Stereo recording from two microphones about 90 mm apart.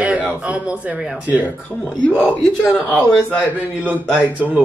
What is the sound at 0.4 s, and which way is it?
Speech, 15° right (ahead or behind).